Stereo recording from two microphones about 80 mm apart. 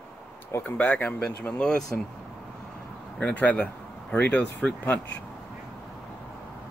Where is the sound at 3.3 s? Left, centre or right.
Centre.